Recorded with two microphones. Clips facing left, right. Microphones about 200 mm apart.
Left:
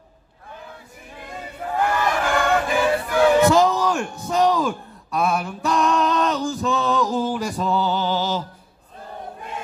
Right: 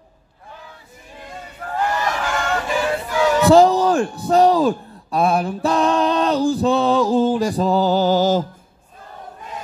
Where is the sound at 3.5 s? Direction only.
30° right (ahead or behind).